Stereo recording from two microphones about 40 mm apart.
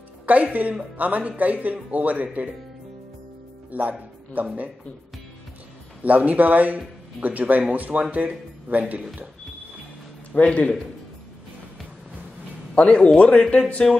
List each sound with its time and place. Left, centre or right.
0.3 s a man's voice: right
3.7 s a man's voice: right
6.0 s a man's voice: right
10.3 s speech: left
12.7 s speech: left